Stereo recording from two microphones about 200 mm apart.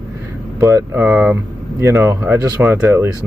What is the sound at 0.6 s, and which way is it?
Speech, 10° right (ahead or behind).